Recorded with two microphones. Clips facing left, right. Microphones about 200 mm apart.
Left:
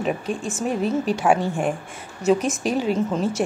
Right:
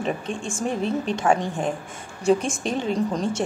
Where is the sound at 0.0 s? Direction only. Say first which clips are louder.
Left 2 dB; 5° left (ahead or behind).